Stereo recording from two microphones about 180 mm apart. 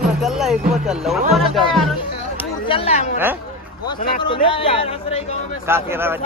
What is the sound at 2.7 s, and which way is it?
Speech, 35° left (ahead or behind).